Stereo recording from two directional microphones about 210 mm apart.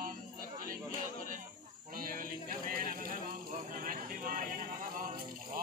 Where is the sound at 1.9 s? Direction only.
40° right (ahead or behind).